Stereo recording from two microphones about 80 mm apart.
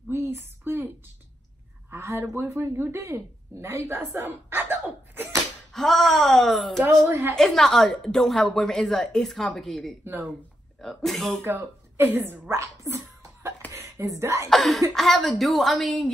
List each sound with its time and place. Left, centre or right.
0.1 s a sound: right
1.9 s a sound: right
2.3 s speech: right
3.9 s slap: right
5.7 s a woman's voice: centre
7.1 s a woman's voice: right
7.3 s a woman's voice: centre
11.4 s speech: right
14.5 s a woman's voice: centre